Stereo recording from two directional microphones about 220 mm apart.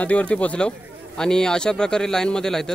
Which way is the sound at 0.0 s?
5° left (ahead or behind).